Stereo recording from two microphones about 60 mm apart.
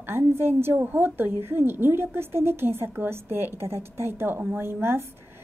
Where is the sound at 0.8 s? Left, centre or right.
Right.